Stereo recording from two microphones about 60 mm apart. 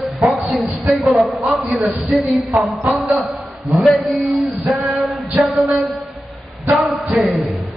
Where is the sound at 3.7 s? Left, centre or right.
Centre.